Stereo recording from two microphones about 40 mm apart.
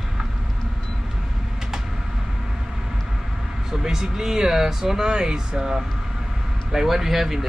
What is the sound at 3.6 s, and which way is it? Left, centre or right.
Speech, centre.